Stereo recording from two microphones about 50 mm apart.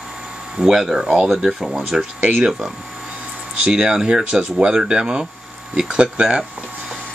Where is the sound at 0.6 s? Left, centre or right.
Centre.